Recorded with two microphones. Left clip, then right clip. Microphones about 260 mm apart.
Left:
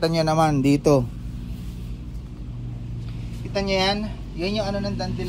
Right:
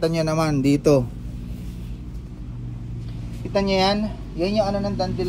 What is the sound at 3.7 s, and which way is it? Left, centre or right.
Speech, left.